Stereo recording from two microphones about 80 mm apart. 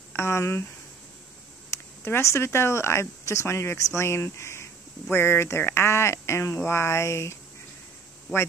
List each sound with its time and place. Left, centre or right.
0.1 s speech: left
1.7 s speech: left